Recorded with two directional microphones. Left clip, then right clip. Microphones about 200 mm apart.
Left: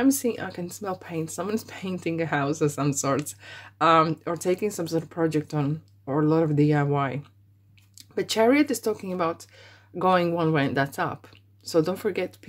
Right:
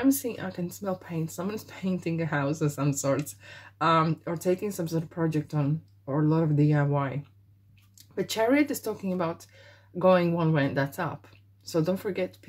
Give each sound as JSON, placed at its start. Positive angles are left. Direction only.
{"t": 0.0, "sound": "speech", "side_deg": 35}